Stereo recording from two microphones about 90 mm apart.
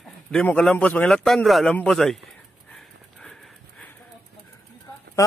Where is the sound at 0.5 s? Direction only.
10° left (ahead or behind).